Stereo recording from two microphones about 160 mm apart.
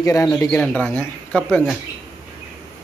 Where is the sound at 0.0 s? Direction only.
20° left (ahead or behind).